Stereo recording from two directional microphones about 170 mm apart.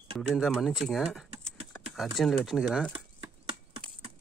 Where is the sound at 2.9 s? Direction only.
30° right (ahead or behind).